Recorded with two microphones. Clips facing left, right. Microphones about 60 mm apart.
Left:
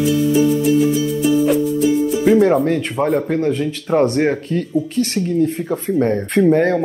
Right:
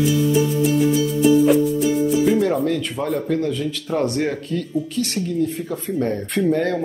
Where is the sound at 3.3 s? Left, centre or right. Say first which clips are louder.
Left 3 dB; left.